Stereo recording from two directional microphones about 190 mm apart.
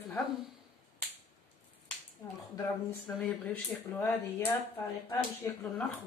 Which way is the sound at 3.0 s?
5° left (ahead or behind).